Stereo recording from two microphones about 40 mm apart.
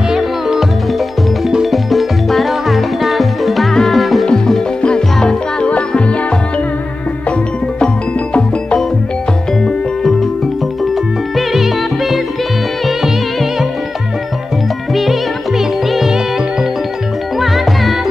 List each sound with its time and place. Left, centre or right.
0.1 s music: centre
1.7 s music: centre
4.8 s music: centre
5.7 s music: left
7.8 s music: left
11.3 s music: centre
15.0 s music: centre